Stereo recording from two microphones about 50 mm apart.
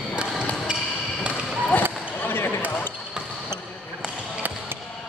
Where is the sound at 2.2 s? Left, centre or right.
Left.